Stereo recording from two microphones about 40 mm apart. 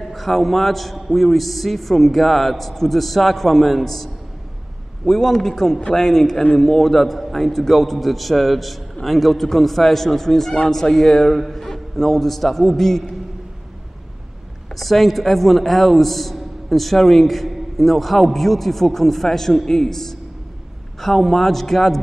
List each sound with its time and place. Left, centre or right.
0.1 s a man's voice: centre
14.8 s a man's voice: centre